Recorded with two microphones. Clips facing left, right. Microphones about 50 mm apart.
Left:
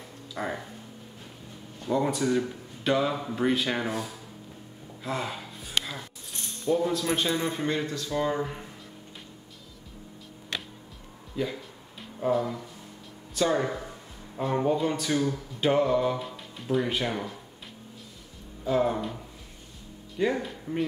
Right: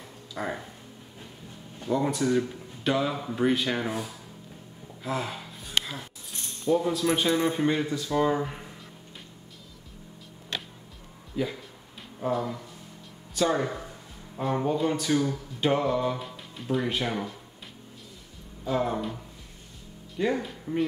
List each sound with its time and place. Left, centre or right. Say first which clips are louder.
0.3 s speech: even; centre
1.9 s speech: even; centre
5.0 s a sound: right 1 dB; centre
6.7 s speech: right 1 dB; centre
11.4 s speech: right 1 dB; centre
18.6 s speech: left 2 dB; centre
20.2 s a man's voice: even; centre